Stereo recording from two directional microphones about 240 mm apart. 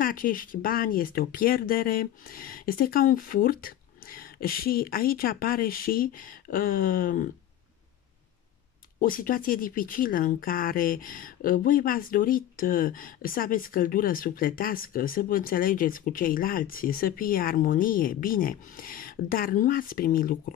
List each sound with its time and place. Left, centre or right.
0.0 s speech: left
9.0 s speech: left